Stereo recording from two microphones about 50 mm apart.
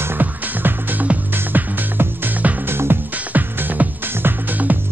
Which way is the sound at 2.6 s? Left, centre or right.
Right.